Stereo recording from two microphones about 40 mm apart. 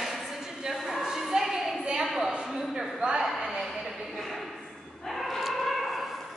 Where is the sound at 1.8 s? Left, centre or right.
Right.